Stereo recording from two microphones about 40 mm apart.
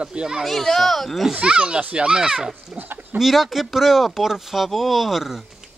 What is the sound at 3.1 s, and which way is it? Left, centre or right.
Speech, centre.